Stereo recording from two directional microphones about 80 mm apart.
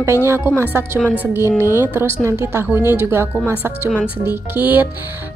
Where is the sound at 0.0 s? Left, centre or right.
Right.